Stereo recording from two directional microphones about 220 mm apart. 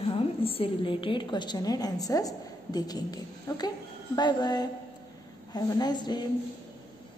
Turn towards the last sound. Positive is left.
turn(degrees=20)  # may be behind; listen again after turning